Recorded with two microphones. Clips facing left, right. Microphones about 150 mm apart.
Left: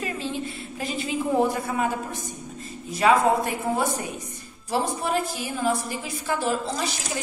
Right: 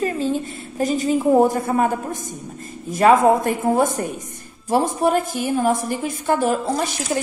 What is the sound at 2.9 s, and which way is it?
A woman's voice, 50° right (ahead or behind).